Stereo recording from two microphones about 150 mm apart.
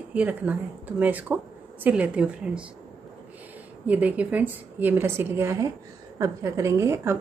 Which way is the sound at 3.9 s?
10° right (ahead or behind).